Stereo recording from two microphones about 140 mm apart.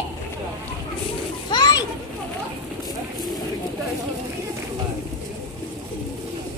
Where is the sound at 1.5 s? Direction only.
30° left (ahead or behind).